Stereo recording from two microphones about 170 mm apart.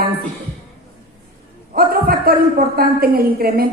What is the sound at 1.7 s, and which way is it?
A woman's voice, 60° right (ahead or behind).